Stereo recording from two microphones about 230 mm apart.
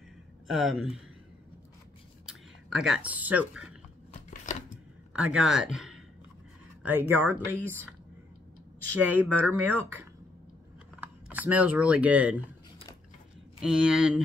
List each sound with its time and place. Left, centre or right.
0.5 s speech: centre
2.2 s speech: centre
4.3 s a sound: left
5.1 s speech: centre
9.1 s speech: centre
11.0 s speech: centre
13.6 s speech: centre